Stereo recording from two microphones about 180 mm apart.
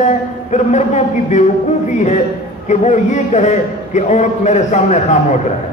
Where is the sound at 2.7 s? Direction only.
40° left (ahead or behind).